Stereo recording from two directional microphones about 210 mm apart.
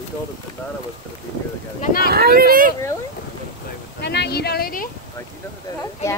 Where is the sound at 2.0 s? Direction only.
50° right (ahead or behind).